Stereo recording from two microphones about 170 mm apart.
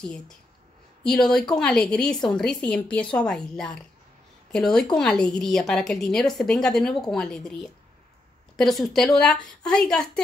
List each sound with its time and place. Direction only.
1.0 s a woman's voice: 5° left (ahead or behind)